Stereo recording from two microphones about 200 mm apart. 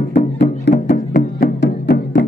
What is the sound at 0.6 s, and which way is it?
Music, 55° left (ahead or behind).